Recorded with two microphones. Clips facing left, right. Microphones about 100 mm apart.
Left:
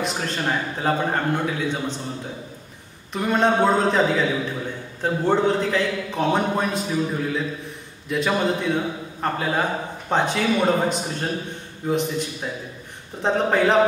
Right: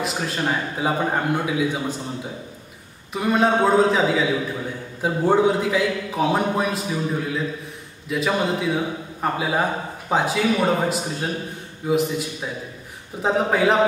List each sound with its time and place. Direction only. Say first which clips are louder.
0.0 s a man's voice: right 1 dB; 5° right (ahead or behind)
3.1 s a man's voice: right 1 dB; 5° right (ahead or behind)